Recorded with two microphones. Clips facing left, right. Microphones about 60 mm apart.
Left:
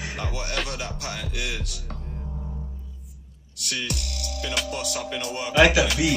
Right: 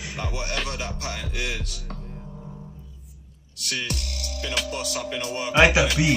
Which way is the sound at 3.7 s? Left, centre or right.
Right.